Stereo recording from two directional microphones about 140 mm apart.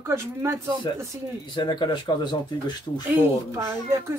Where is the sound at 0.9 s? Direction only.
30° left (ahead or behind).